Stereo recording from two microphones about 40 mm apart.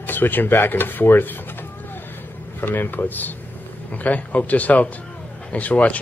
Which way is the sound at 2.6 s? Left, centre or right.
Left.